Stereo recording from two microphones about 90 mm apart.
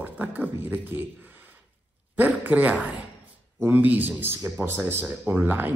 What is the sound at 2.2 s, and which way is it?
A man's voice, 20° right (ahead or behind).